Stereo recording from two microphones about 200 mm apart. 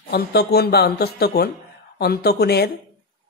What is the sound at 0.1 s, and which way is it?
Speech, 50° left (ahead or behind).